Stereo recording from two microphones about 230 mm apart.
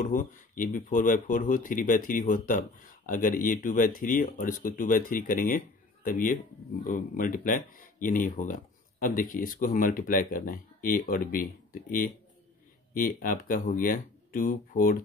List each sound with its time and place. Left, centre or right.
0.0 s speech: left